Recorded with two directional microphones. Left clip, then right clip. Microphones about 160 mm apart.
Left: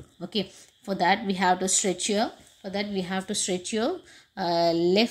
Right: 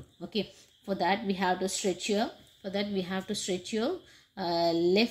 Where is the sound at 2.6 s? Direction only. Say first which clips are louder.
Left 3 dB; 10° left (ahead or behind).